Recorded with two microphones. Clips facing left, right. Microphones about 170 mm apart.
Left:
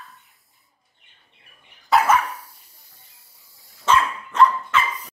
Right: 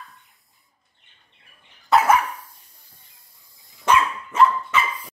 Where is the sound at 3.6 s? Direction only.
15° right (ahead or behind).